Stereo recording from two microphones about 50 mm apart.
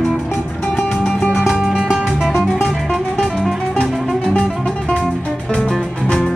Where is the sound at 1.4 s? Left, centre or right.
Centre.